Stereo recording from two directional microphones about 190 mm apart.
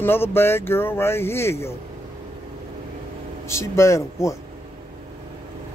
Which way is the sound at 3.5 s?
15° left (ahead or behind).